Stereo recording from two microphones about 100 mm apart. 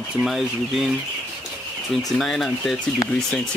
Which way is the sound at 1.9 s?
5° left (ahead or behind).